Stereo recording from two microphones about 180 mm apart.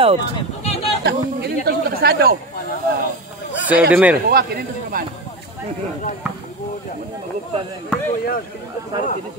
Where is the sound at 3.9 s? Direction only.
10° right (ahead or behind).